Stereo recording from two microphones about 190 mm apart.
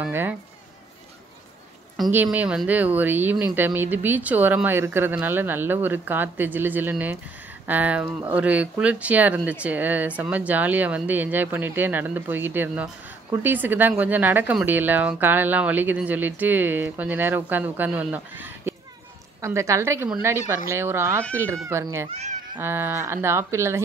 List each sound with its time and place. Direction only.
0.0 s a woman's voice: 10° right (ahead or behind)
2.0 s a woman's voice: centre (ahead or behind)
22.1 s speech: 35° right (ahead or behind)
22.6 s a woman's voice: 10° right (ahead or behind)